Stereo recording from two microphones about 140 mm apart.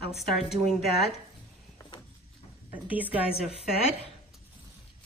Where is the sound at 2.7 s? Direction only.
10° right (ahead or behind).